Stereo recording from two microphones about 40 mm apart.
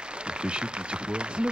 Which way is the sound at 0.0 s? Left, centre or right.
Right.